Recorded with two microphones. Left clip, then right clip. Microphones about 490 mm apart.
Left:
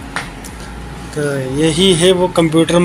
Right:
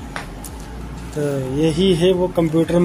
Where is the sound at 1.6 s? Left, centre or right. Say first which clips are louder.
Left 5 dB; right.